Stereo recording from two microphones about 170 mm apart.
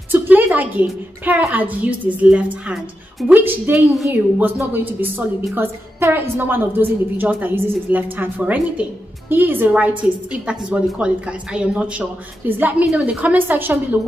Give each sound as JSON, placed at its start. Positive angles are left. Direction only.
{"t": 0.1, "sound": "a woman's voice", "side_deg": -10}